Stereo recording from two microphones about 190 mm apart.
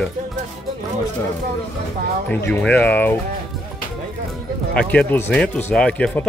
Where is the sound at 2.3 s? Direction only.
10° left (ahead or behind).